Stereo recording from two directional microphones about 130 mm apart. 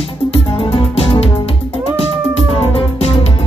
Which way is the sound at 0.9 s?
50° left (ahead or behind).